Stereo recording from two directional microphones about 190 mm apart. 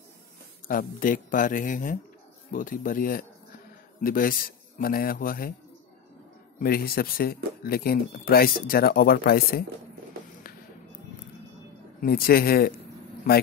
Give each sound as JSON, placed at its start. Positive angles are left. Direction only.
{"t": 0.7, "sound": "speech", "side_deg": 45}
{"t": 6.6, "sound": "speech", "side_deg": 50}
{"t": 12.0, "sound": "speech", "side_deg": 50}